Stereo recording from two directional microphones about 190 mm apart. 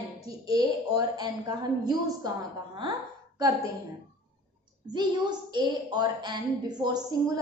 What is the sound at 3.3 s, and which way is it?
Speech, 20° right (ahead or behind).